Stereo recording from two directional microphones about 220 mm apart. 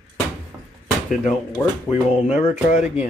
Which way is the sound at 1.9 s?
30° left (ahead or behind).